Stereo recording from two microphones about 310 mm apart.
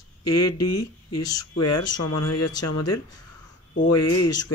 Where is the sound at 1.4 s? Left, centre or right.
Left.